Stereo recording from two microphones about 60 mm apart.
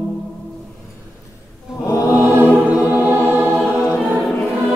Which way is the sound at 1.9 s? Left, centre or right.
Left.